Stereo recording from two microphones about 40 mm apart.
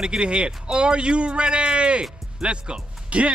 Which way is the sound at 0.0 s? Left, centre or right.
Right.